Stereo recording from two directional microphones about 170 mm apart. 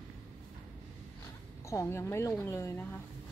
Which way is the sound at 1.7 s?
15° left (ahead or behind).